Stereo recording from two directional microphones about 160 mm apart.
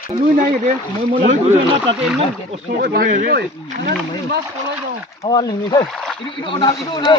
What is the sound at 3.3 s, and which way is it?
Speech, 90° right.